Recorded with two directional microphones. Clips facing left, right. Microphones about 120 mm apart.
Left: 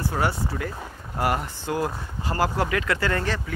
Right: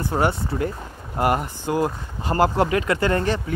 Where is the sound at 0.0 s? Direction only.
20° right (ahead or behind).